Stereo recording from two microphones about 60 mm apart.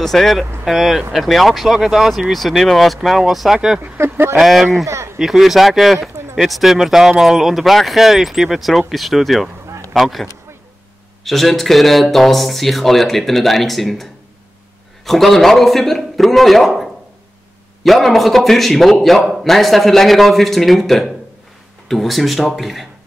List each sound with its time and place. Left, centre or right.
0.0 s speech: centre
0.7 s speech: centre
3.8 s speech: right
4.4 s speech: centre
4.8 s a sound: right
5.2 s speech: centre
11.2 s speech: centre
15.0 s speech: centre